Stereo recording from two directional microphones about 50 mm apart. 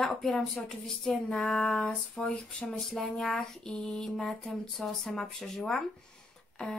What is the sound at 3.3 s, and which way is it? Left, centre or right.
Speech, centre.